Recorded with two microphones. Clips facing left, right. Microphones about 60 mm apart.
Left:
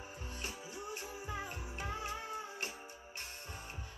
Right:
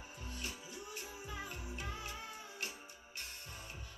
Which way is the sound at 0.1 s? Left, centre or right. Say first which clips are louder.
Even; left.